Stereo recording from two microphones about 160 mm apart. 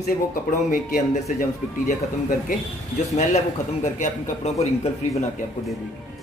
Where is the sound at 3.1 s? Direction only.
45° left (ahead or behind).